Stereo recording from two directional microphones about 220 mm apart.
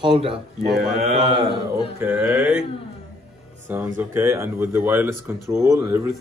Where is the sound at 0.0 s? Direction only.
20° right (ahead or behind).